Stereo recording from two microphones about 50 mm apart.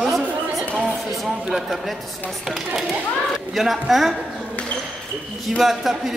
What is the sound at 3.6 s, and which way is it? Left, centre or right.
Speech, centre.